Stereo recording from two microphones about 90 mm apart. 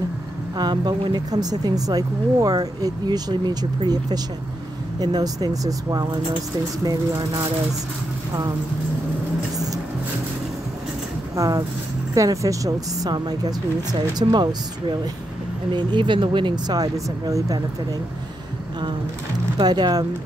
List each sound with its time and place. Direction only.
0.6 s speech: 50° right (ahead or behind)
11.3 s speech: 40° right (ahead or behind); by 16.7 s 60° right (ahead or behind)
16.7 s speech: 40° right (ahead or behind)
19.6 s speech: 50° right (ahead or behind)